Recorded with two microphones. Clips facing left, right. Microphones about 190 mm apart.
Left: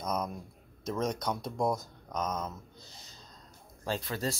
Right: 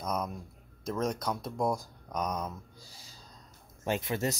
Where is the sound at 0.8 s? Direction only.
5° right (ahead or behind).